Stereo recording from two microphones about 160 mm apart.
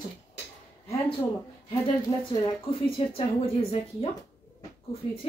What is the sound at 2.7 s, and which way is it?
Speech, 35° left (ahead or behind).